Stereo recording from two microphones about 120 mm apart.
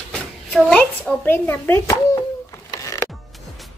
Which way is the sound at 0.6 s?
5° left (ahead or behind).